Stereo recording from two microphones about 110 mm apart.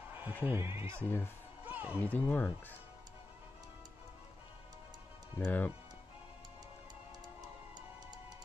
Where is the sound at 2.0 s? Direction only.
15° left (ahead or behind).